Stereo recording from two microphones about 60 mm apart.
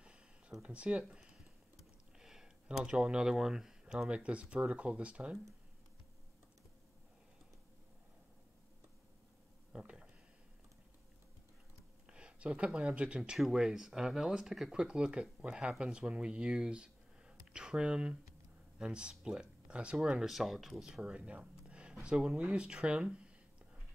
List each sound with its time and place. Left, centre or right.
0.6 s speech: centre
9.7 s a sound: centre
12.1 s speech: centre
20.2 s speech: centre